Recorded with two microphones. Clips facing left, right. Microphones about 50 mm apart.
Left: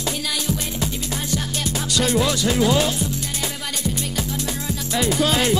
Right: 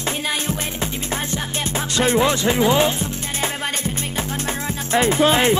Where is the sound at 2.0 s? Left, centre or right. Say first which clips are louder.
Right 3 dB; right.